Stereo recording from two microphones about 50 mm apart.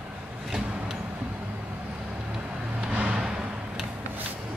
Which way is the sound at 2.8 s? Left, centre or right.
Right.